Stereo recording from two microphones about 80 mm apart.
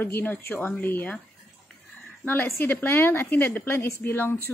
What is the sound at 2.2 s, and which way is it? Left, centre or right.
A woman's voice, left.